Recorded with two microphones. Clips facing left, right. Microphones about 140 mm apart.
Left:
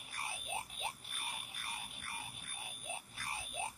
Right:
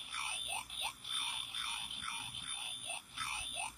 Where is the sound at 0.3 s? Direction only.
35° left (ahead or behind).